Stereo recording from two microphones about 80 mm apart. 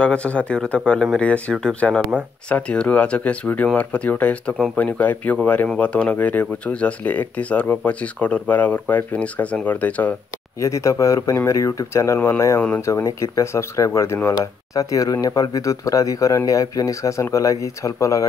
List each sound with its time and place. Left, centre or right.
0.0 s speech: centre
10.6 s speech: left